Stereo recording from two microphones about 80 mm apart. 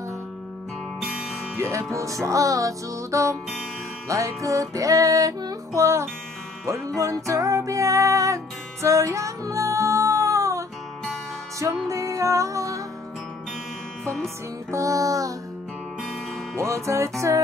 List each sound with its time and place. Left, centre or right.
1.6 s music: right
11.9 s music: right
14.7 s music: right
16.5 s music: right